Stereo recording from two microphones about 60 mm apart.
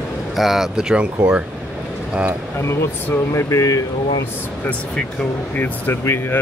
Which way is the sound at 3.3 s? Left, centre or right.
Left.